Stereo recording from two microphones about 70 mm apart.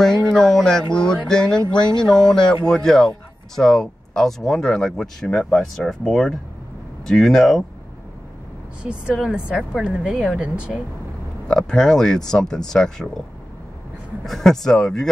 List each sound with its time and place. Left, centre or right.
0.0 s speech: centre
9.1 s speech: centre
9.8 s speech: centre
10.1 s speech: centre
10.4 s speech: centre
11.4 s speech: centre
14.2 s speech: centre